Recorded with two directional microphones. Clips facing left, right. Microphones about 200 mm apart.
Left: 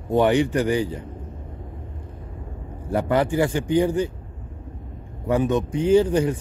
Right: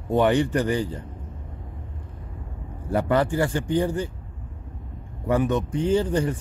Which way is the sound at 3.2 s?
15° left (ahead or behind).